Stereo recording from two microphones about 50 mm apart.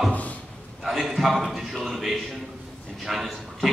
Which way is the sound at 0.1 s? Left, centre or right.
Left.